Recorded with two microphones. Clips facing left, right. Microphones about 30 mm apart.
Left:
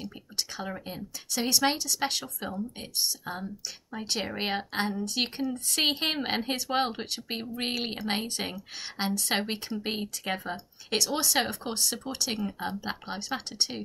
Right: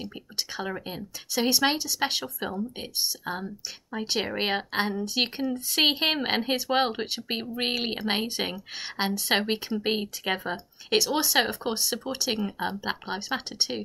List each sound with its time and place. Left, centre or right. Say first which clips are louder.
0.0 s speech: right 1 dB; centre